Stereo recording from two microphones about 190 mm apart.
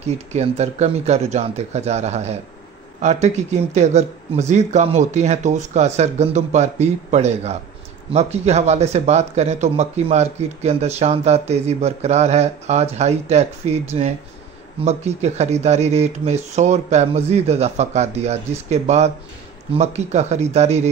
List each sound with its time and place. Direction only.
0.0 s speech: 35° right (ahead or behind)